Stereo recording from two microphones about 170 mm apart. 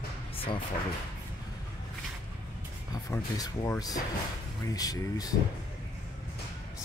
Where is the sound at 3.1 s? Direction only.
20° left (ahead or behind).